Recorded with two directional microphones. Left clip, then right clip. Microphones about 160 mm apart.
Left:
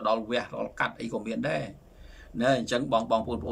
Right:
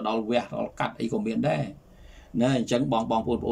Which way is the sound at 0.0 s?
20° right (ahead or behind).